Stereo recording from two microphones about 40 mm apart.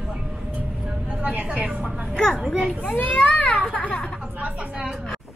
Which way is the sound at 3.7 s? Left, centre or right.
Left.